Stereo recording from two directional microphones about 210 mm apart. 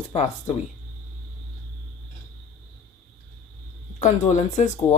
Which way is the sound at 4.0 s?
35° left (ahead or behind).